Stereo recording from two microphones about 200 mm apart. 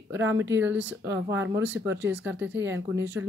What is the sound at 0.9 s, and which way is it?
Speech, 15° right (ahead or behind).